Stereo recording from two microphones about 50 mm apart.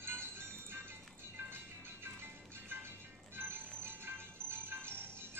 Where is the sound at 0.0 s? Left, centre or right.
Right.